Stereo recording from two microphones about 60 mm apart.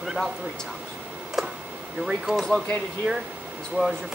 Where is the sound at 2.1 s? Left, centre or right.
Centre.